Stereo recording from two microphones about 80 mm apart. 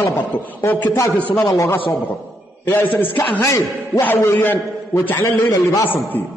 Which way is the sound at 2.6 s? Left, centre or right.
Left.